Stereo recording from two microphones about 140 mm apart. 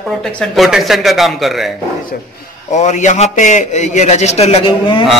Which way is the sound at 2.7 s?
60° left (ahead or behind).